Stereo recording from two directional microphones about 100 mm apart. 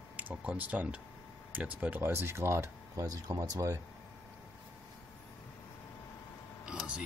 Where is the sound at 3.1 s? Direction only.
40° right (ahead or behind).